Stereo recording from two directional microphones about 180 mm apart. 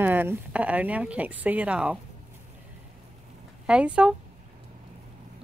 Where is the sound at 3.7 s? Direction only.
5° right (ahead or behind).